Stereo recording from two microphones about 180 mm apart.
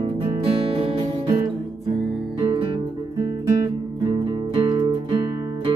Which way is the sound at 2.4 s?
30° right (ahead or behind).